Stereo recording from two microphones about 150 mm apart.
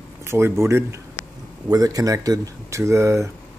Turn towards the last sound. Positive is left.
turn(degrees=-20)  # may be behind; listen again after turning